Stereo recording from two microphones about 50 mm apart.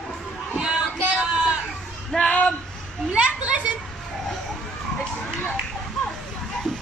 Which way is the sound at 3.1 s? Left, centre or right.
Right.